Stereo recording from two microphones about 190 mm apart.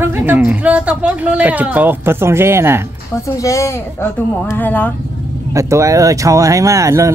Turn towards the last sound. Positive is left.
turn(degrees=-15)  # may be behind; listen again after turning